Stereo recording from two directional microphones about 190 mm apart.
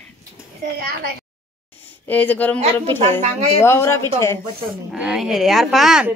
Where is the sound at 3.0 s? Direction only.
35° right (ahead or behind).